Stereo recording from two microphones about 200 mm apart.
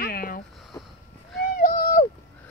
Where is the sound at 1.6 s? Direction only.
40° left (ahead or behind).